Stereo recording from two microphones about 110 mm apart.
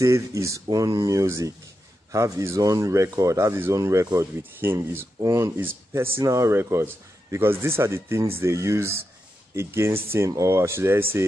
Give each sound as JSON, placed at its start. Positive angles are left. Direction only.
{"t": 0.0, "sound": "speech", "side_deg": -30}